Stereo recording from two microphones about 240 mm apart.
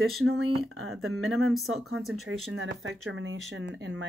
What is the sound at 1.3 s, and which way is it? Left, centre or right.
Speech, centre.